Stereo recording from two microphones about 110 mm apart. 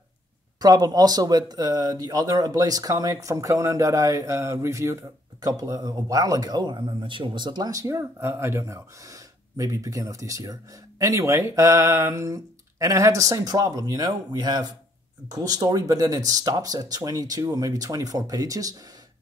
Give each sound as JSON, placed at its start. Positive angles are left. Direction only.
{"t": 0.6, "sound": "speech", "side_deg": -35}